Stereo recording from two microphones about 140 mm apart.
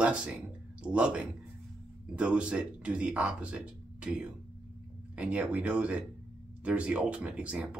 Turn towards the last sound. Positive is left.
turn(degrees=-5)  # may be behind; listen again after turning